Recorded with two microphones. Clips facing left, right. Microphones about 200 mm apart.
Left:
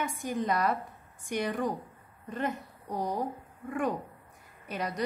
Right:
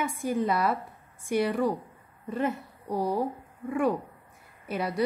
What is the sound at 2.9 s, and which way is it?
Speech, 20° left (ahead or behind).